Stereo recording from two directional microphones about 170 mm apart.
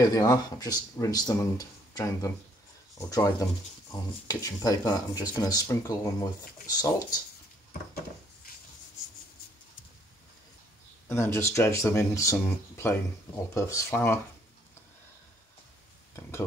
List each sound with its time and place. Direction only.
0.0 s speech: 20° left (ahead or behind)
3.1 s speech: 20° left (ahead or behind)
11.1 s speech: 15° left (ahead or behind)